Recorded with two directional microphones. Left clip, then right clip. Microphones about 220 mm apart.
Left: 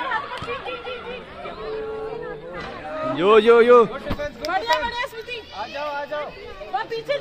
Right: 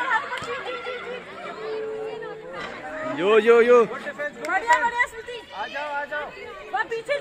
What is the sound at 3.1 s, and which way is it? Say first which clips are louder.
Speech: left 3 dB; 10° left (ahead or behind).